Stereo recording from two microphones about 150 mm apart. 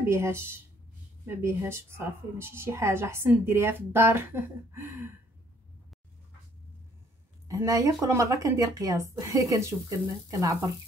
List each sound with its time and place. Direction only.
0.0 s a woman's voice: 15° right (ahead or behind)
7.4 s speech: 20° right (ahead or behind)